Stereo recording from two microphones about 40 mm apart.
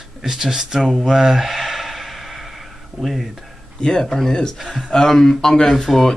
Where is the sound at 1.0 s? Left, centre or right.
Centre.